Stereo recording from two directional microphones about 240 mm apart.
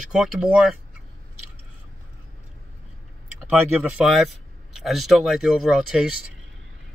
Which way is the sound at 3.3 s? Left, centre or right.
Centre.